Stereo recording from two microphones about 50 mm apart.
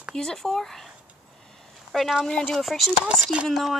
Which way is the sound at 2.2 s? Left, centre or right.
Centre.